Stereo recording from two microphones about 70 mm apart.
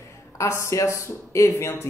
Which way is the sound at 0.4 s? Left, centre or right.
Left.